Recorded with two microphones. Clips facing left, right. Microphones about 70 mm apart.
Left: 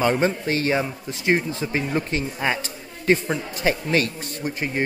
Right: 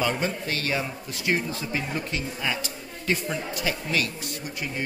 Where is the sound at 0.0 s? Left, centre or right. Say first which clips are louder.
Left 6 dB; left.